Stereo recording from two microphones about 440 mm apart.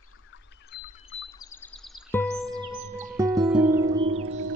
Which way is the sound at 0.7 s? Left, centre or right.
Left.